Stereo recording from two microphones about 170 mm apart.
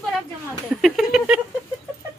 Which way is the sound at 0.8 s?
Centre (ahead or behind).